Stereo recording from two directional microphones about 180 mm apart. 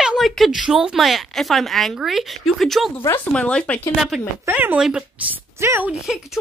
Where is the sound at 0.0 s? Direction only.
Centre (ahead or behind).